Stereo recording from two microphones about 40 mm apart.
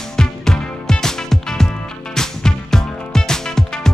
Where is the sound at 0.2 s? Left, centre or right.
Centre.